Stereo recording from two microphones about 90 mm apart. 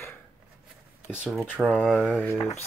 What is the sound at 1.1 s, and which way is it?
Speech, 10° right (ahead or behind).